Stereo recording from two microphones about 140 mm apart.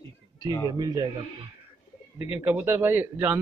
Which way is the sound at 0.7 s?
30° right (ahead or behind).